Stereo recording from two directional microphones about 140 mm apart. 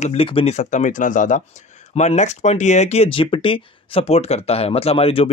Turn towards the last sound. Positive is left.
turn(degrees=45)  # may be behind; listen again after turning